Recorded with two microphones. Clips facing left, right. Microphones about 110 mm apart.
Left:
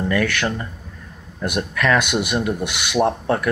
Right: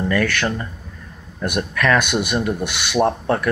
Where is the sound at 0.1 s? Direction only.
20° left (ahead or behind).